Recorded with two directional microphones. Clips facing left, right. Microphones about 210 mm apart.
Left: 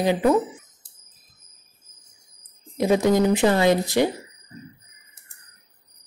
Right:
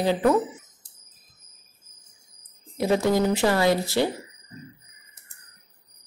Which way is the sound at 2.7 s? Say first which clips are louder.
Left 3 dB; 15° left (ahead or behind).